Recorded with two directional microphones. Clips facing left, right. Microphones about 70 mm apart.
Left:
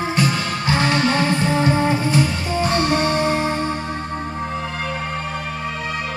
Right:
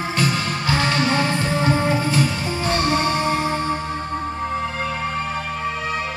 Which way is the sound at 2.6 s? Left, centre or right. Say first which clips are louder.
Left 1 dB; left.